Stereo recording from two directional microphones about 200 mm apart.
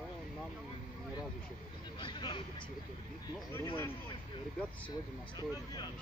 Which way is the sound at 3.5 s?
10° left (ahead or behind).